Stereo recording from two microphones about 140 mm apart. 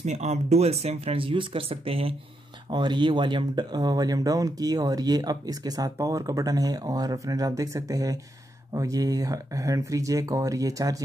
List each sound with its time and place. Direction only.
0.0 s speech: 55° right (ahead or behind)
2.7 s speech: 30° right (ahead or behind)